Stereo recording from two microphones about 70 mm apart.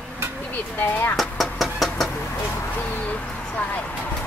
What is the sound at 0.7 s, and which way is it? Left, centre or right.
Speech, left.